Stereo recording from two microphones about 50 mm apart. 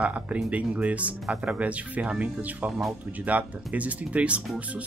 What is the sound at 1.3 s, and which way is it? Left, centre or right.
Speech, centre.